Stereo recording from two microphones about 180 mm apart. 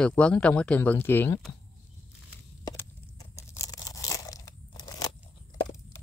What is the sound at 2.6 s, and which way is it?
Tearing, 20° left (ahead or behind).